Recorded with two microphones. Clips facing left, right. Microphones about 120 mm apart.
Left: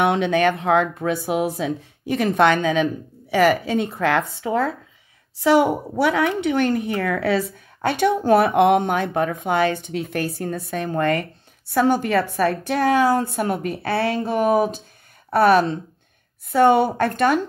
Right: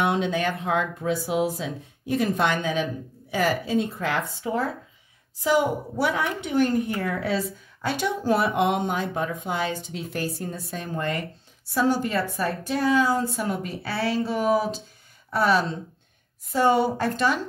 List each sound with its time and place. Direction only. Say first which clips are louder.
0.0 s speech: left 6 dB; 70° left (ahead or behind)
3.6 s speech: left 4 dB; 65° left (ahead or behind)
5.4 s a woman's voice: left 6 dB; 75° left (ahead or behind); by 17.4 s 60° left (ahead or behind)